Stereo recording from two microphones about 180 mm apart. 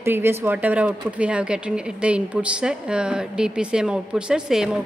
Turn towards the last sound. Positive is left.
turn(degrees=0)  # may be behind; listen again after turning